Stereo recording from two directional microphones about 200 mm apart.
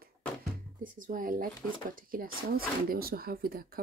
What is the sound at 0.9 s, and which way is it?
Speech, 40° right (ahead or behind).